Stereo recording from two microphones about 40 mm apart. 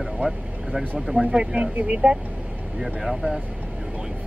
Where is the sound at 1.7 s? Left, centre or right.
Right.